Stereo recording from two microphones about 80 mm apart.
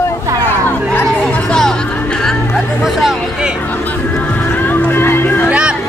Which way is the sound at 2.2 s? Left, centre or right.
Centre.